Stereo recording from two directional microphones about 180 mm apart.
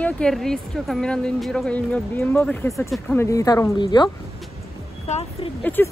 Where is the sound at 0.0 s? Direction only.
5° left (ahead or behind); by 4.1 s 25° left (ahead or behind).